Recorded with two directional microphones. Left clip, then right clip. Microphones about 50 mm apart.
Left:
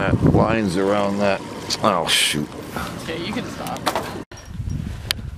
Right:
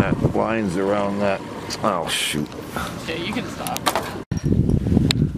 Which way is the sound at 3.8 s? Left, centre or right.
Centre.